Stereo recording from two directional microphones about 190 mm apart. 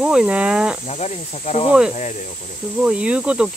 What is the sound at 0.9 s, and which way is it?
Speech, 35° left (ahead or behind).